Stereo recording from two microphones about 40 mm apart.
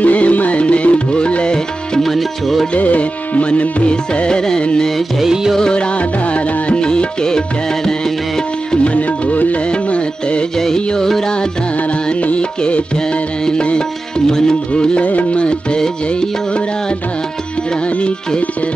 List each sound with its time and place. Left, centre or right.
0.0 s music: left
2.0 s music: centre
2.7 s music: left; by 4.6 s centre
5.2 s music: centre
5.6 s music: left
8.8 s music: left
9.7 s music: left
10.9 s music: centre
12.1 s music: left
14.7 s music: left
15.8 s music: centre